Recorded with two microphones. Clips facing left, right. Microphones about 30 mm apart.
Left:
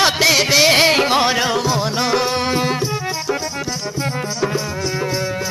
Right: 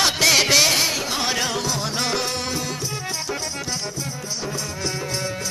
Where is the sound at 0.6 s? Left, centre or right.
Left.